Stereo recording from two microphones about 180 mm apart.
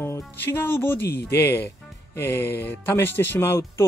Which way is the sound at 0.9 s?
65° left (ahead or behind).